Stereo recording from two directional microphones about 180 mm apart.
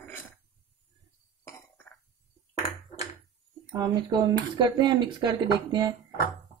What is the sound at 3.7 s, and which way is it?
Speech, 25° right (ahead or behind).